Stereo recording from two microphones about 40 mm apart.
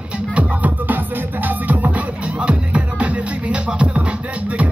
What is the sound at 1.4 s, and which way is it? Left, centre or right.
Music, right.